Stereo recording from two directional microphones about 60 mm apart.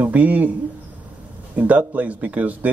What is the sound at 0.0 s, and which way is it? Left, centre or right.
A man's voice, right.